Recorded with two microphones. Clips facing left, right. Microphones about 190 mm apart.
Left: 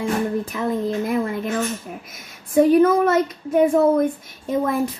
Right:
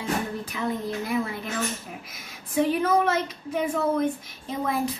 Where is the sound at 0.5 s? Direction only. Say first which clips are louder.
Left 6 dB; 50° left (ahead or behind).